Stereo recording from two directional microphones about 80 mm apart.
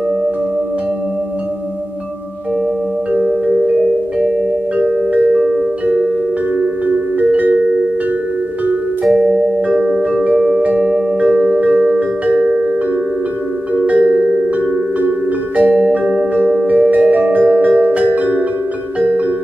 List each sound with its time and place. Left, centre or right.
3.1 s music: centre
4.7 s music: right
5.3 s music: centre
7.2 s music: right
9.2 s music: centre
13.7 s music: centre